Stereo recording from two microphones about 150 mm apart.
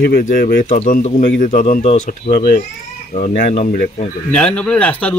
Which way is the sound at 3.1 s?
60° left (ahead or behind).